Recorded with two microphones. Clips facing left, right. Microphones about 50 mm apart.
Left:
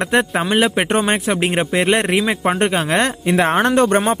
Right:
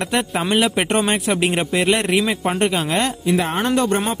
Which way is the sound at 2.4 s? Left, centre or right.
Left.